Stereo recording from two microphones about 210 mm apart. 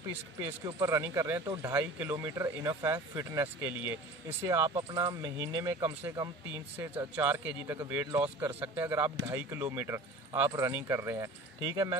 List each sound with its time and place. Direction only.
0.1 s speech: 15° right (ahead or behind)
4.5 s speech: 20° right (ahead or behind)